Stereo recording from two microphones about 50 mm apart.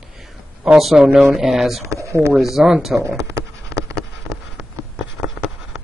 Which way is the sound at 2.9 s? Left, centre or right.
Right.